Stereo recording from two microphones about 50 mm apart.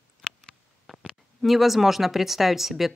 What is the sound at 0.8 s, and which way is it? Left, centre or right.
Speech, centre.